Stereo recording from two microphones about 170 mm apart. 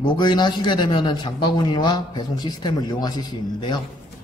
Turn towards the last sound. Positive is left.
turn(degrees=25)  # may be behind; listen again after turning